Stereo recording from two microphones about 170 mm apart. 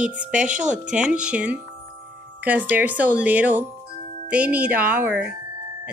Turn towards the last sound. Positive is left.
turn(degrees=-10)  # may be behind; listen again after turning